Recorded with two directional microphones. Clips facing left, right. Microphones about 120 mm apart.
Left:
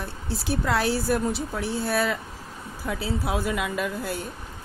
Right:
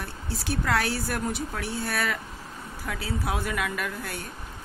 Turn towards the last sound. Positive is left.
turn(degrees=25)  # may be behind; listen again after turning